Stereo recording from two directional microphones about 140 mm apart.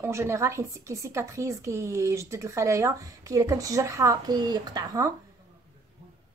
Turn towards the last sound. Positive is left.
turn(degrees=-30)  # may be behind; listen again after turning